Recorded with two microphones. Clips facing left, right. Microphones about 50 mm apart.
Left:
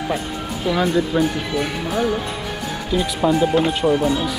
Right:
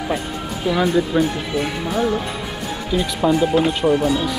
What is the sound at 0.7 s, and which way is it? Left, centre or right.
Speech, centre.